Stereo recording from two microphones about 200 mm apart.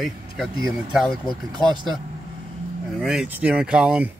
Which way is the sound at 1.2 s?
20° right (ahead or behind).